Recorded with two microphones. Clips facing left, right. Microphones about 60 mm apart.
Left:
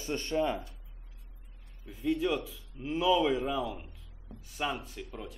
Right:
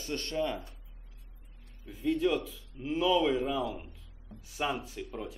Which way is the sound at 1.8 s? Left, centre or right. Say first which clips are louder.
Right 1 dB; centre.